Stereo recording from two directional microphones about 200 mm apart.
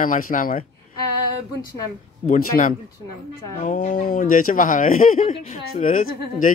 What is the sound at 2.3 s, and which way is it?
Speech, 40° left (ahead or behind).